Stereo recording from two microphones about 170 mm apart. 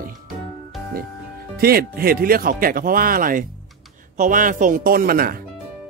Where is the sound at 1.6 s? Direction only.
60° right (ahead or behind).